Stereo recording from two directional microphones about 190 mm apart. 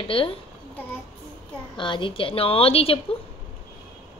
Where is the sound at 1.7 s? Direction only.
25° left (ahead or behind).